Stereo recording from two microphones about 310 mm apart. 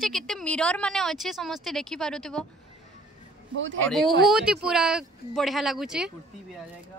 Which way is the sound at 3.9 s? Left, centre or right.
Centre.